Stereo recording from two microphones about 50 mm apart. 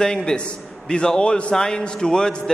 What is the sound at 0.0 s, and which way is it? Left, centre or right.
A man's voice, centre.